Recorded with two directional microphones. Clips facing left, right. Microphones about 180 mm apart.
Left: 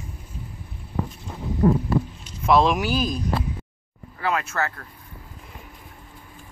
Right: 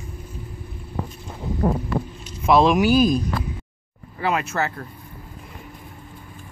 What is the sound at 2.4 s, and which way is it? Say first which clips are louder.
Speech: right 3 dB; 5° right (ahead or behind).